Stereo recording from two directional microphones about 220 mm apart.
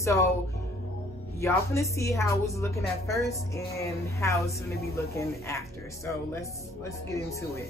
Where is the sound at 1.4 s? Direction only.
15° left (ahead or behind).